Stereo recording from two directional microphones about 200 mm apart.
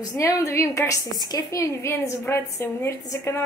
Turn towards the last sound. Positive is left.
turn(degrees=15)  # may be behind; listen again after turning